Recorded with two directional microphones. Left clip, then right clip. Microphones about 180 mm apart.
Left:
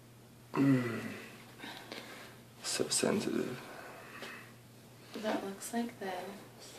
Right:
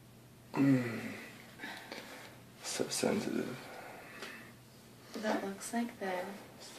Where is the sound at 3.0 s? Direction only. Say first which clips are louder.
Right 1 dB; 15° left (ahead or behind).